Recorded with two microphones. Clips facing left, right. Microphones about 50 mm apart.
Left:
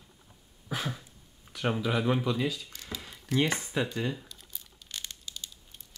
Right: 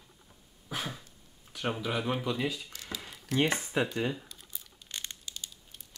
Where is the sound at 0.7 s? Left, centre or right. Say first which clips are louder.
Left 2 dB; centre.